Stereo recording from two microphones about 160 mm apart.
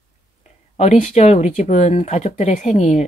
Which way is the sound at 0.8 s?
45° left (ahead or behind).